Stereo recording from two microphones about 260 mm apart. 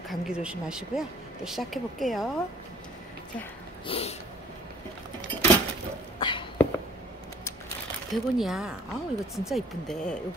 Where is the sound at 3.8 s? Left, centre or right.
Left.